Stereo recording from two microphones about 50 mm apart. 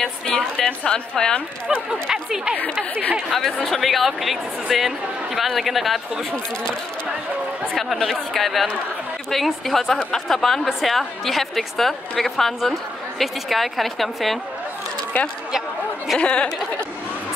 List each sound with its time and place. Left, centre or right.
0.0 s a woman's voice: centre
1.9 s speech: centre
3.3 s a woman's voice: centre
7.7 s a woman's voice: centre
15.2 s speech: left
16.2 s speech: left